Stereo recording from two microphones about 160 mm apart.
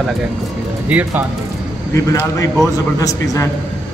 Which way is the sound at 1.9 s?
20° left (ahead or behind).